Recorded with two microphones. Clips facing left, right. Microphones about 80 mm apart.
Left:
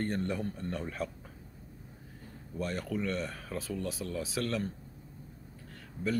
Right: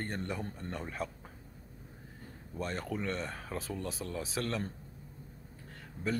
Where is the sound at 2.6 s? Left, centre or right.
Right.